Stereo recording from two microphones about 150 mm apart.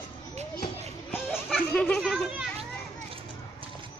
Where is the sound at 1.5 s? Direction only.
5° left (ahead or behind).